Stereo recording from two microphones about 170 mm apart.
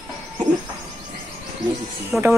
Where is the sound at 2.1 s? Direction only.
15° right (ahead or behind).